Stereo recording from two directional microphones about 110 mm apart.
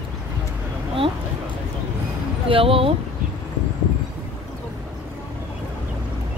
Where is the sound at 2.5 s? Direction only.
55° right (ahead or behind).